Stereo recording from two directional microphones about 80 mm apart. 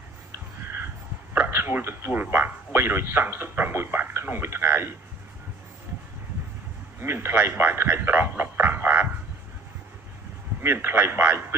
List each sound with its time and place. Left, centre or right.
1.5 s a man's voice: right
7.0 s a man's voice: right
10.6 s a man's voice: right